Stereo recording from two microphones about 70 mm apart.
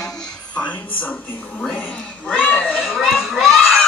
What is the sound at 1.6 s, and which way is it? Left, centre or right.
Television, centre.